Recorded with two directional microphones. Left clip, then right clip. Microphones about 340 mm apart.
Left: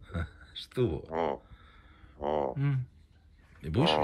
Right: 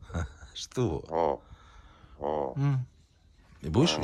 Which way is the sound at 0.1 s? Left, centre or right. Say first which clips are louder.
Right 1 dB; centre.